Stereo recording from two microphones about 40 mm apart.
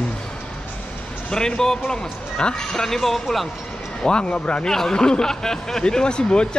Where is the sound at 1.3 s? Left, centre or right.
Centre.